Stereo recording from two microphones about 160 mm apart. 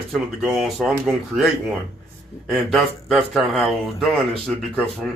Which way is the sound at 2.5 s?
Centre (ahead or behind).